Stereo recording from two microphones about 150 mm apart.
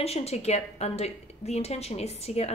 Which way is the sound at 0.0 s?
45° left (ahead or behind).